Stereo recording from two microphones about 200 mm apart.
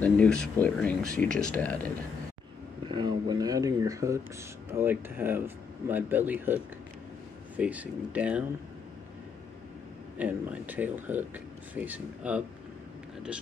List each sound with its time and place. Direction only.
0.0 s speech: 5° left (ahead or behind)
2.9 s a sound: 20° right (ahead or behind)
4.6 s speech: 10° right (ahead or behind)
10.1 s speech: 10° right (ahead or behind)